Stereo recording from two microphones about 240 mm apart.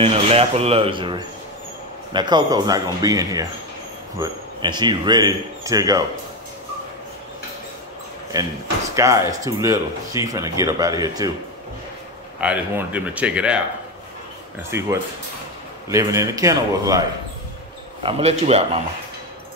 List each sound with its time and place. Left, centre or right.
0.0 s speech: right
8.9 s speech: centre
12.4 s speech: centre
14.7 s speech: centre
18.0 s speech: right